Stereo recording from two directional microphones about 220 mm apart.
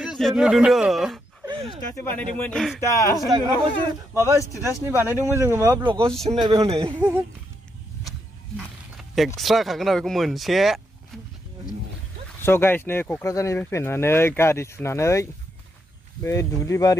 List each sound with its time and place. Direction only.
0.0 s speech: centre (ahead or behind)
1.4 s a sound: 20° right (ahead or behind)
2.3 s speech: 5° left (ahead or behind)
2.9 s speech: 15° left (ahead or behind)
3.3 s speech: 15° right (ahead or behind)
6.1 s speech: centre (ahead or behind)
6.5 s speech: 20° right (ahead or behind)
7.0 s speech: 5° right (ahead or behind)
8.9 s speech: centre (ahead or behind)
12.4 s speech: 10° left (ahead or behind)